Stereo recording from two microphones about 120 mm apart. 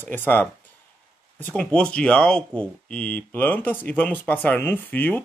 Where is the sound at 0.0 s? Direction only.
15° left (ahead or behind).